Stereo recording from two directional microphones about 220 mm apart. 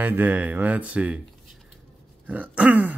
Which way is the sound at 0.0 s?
10° right (ahead or behind).